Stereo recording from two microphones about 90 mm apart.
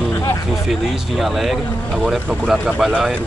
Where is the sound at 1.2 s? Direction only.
Centre (ahead or behind).